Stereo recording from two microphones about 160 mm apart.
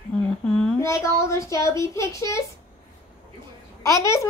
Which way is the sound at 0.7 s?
20° left (ahead or behind).